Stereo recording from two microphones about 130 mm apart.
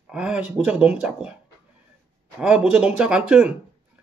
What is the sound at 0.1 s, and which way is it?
Speech, 5° right (ahead or behind).